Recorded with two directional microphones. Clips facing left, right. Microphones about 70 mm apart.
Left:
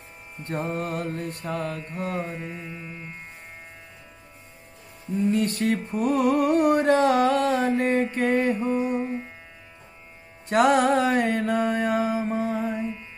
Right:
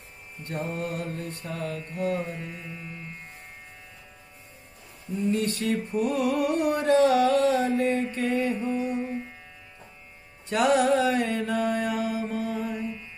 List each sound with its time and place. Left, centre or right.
0.4 s music: left
2.1 s carnatic music: left
5.3 s music: left
10.5 s mantra: left